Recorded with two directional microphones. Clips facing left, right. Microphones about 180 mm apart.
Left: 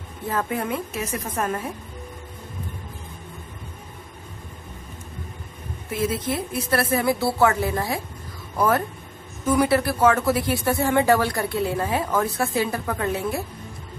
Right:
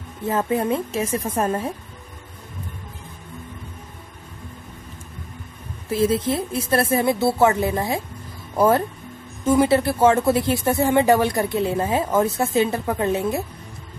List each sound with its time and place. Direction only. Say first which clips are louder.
0.3 s speech: right 5 dB; 25° right (ahead or behind)
5.9 s speech: right 5 dB; 30° right (ahead or behind)